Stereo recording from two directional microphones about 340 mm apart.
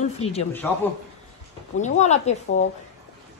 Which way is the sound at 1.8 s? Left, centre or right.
Centre.